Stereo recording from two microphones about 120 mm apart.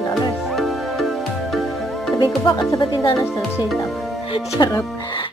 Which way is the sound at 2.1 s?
35° left (ahead or behind).